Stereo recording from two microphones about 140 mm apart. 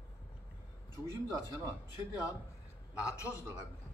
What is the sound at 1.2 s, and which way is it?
Speech, 20° right (ahead or behind).